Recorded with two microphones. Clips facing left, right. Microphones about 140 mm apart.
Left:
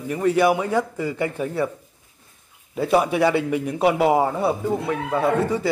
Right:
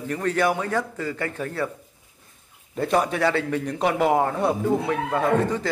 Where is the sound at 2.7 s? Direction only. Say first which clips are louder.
Left 3 dB; 5° left (ahead or behind).